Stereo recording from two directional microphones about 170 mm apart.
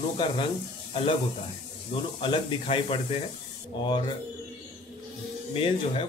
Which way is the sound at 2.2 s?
30° left (ahead or behind).